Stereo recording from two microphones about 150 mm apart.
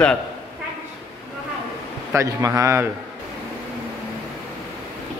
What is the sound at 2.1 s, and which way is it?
Speech, 20° right (ahead or behind).